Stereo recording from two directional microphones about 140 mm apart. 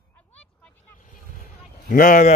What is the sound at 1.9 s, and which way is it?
Speech, 85° left.